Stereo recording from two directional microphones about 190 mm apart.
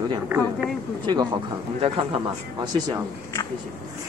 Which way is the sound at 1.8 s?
30° right (ahead or behind).